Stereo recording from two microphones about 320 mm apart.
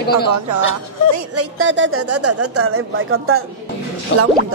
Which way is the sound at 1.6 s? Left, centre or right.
Right.